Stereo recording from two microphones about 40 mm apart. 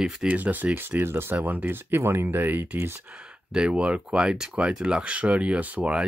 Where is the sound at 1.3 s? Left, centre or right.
Right.